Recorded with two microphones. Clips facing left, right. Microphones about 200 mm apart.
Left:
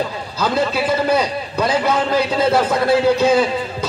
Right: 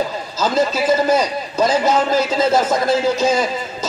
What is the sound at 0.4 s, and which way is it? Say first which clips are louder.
Speech: right 1 dB; 60° left (ahead or behind).